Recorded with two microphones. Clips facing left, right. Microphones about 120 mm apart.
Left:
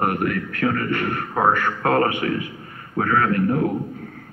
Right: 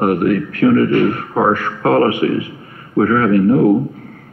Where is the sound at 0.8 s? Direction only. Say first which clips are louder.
Right 10 dB; 20° right (ahead or behind).